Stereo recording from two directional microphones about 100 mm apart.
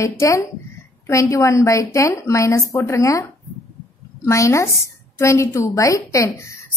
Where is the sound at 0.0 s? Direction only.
30° left (ahead or behind).